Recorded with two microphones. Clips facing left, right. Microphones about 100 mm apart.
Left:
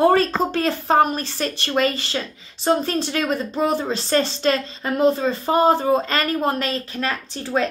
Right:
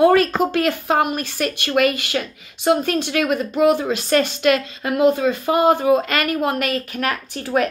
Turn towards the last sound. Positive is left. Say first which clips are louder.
# right 2 dB
turn(degrees=25)  # may be behind; listen again after turning